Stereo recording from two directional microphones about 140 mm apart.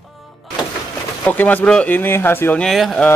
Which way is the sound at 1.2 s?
10° left (ahead or behind).